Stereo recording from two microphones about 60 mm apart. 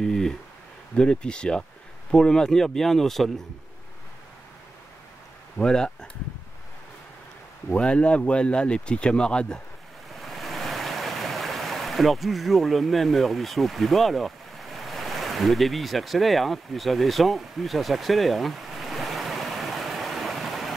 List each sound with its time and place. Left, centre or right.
0.0 s a sound: centre
0.9 s speech: centre
5.6 s speech: centre
7.7 s speech: centre
10.1 s stream: centre